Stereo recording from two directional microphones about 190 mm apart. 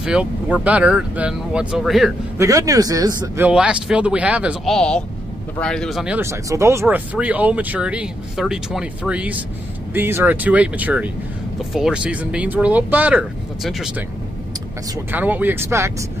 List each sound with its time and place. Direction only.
0.0 s speech: 5° right (ahead or behind)
2.3 s speech: 15° right (ahead or behind)
3.4 s speech: 5° right (ahead or behind)
15.0 s speech: 10° right (ahead or behind)